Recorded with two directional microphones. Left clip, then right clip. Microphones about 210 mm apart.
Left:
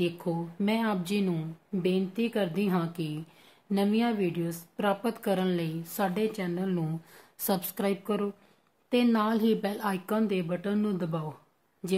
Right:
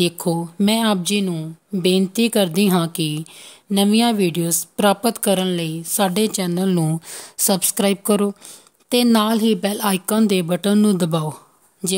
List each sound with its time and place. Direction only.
0.0 s speech: 55° right (ahead or behind)
1.0 s a woman's voice: 40° right (ahead or behind)
1.8 s speech: 55° right (ahead or behind)